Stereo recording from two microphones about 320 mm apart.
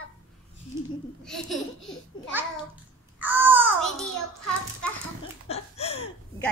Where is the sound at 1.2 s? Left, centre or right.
Centre.